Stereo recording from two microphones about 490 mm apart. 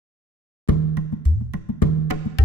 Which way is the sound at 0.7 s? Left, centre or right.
Left.